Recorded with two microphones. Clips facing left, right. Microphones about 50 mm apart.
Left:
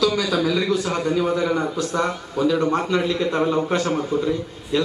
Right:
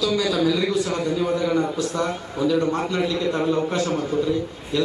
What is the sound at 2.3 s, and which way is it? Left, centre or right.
A man's voice, left.